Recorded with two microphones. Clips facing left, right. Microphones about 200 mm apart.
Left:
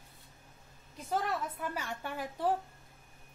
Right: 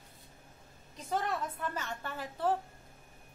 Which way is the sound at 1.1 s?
10° left (ahead or behind).